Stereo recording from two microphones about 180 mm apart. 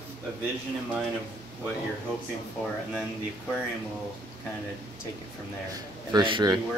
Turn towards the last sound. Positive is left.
turn(degrees=-25)  # may be behind; listen again after turning